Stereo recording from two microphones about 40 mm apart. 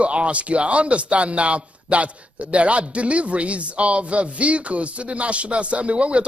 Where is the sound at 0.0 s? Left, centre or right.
Right.